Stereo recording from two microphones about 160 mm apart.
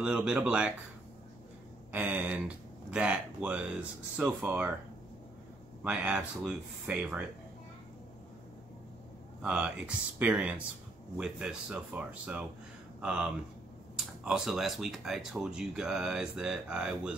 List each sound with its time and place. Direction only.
0.0 s speech: 5° right (ahead or behind)
1.9 s speech: 10° right (ahead or behind)
5.9 s speech: 10° right (ahead or behind)
9.4 s speech: 5° right (ahead or behind)